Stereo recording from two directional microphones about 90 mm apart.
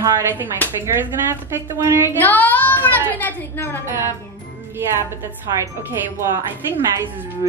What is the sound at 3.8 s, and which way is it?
Speech, 30° right (ahead or behind).